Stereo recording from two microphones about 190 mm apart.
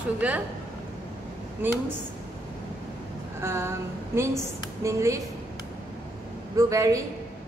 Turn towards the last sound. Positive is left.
turn(degrees=-15)  # may be behind; listen again after turning